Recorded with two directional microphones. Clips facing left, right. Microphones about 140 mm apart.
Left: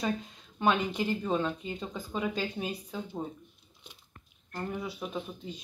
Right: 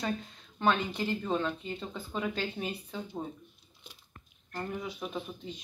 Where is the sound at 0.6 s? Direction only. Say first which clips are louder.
Left 1 dB; 10° left (ahead or behind).